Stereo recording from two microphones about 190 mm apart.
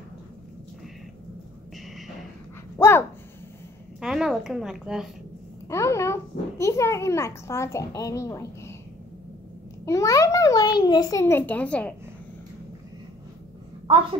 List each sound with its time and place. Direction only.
2.8 s a sound: 15° left (ahead or behind)
4.0 s a woman's voice: 5° right (ahead or behind)
5.7 s a child's voice: 15° left (ahead or behind)
9.8 s a child's voice: 15° left (ahead or behind)